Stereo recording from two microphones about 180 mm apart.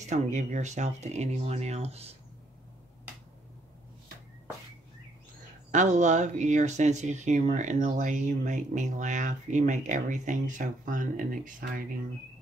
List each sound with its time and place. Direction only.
0.1 s speech: 40° right (ahead or behind)
5.7 s speech: 40° right (ahead or behind)